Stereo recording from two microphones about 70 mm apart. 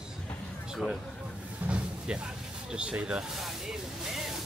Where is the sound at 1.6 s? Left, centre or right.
Centre.